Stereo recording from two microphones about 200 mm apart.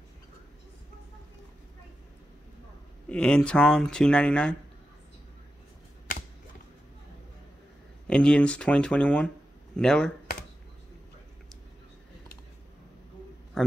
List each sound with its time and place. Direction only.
3.1 s speech: 5° left (ahead or behind)
8.1 s speech: 5° left (ahead or behind)